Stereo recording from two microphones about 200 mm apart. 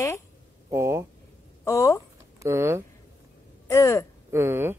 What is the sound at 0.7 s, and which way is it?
Speech, 15° right (ahead or behind).